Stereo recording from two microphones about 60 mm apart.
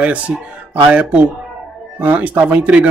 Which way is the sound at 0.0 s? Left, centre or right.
Right.